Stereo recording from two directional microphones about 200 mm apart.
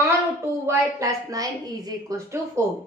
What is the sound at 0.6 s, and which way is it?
A woman's voice, 15° right (ahead or behind).